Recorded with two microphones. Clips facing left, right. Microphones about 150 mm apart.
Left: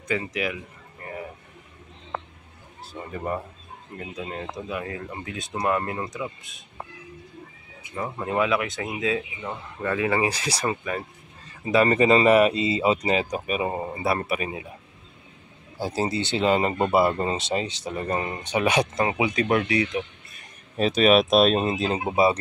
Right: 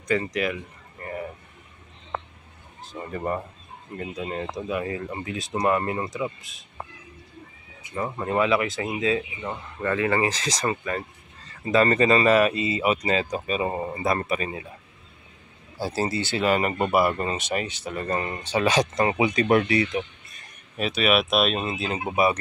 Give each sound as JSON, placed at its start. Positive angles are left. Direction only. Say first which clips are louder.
{"t": 0.1, "sound": "speech", "louder": "right 3 dB", "side_deg": 5}
{"t": 1.0, "sound": "vehicle", "louder": "right 3 dB", "side_deg": 5}
{"t": 2.8, "sound": "speech", "louder": "right 2 dB", "side_deg": 5}
{"t": 7.9, "sound": "speech", "louder": "right 1 dB", "side_deg": 0}
{"t": 15.8, "sound": "speech", "louder": "even", "side_deg": 15}
{"t": 20.7, "sound": "speech", "louder": "left 4 dB", "side_deg": 35}